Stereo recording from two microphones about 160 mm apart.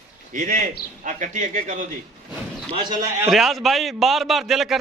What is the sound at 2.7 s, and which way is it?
Speech, 35° right (ahead or behind).